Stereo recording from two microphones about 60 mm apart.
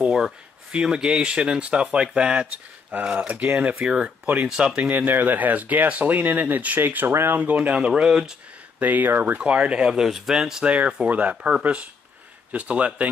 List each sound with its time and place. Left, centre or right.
0.0 s speech: centre
7.7 s speech: centre
8.7 s speech: right; by 10.6 s centre
10.6 s speech: right
12.5 s speech: right